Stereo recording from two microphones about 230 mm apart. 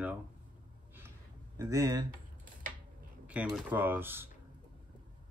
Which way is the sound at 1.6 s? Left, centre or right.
Centre.